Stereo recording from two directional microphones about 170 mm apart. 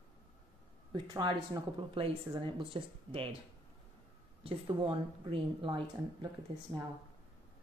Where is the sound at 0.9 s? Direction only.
25° right (ahead or behind).